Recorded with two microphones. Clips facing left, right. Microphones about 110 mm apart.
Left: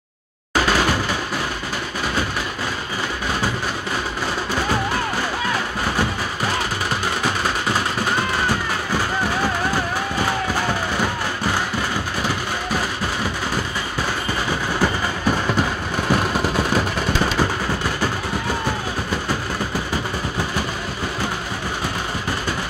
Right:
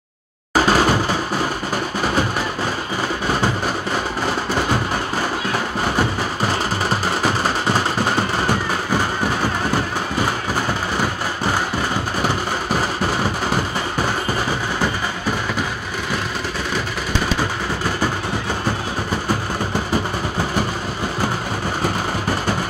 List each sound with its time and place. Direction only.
0.6 s drum: 30° right (ahead or behind)